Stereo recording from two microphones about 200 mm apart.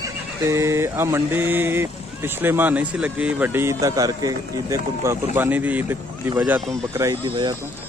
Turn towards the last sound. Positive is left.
turn(degrees=-25)  # may be behind; listen again after turning